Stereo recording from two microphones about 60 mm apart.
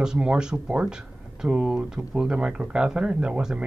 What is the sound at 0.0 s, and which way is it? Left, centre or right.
Speech, centre.